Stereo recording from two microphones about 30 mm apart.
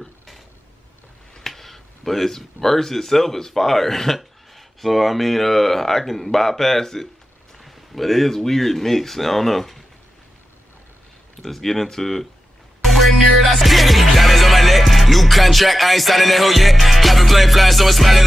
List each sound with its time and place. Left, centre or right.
1.4 s speech: centre
7.5 s speech: centre
11.4 s speech: centre
12.8 s music: centre